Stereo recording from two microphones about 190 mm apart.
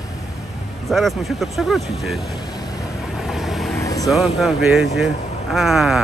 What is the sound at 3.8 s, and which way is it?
Vehicle, 20° left (ahead or behind).